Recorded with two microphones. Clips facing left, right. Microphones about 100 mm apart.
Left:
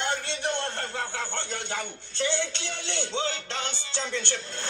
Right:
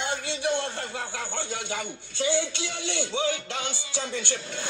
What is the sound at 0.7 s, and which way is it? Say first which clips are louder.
Speech: left 1 dB; 50° left (ahead or behind).